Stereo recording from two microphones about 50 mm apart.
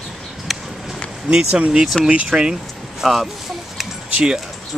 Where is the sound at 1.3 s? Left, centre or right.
Centre.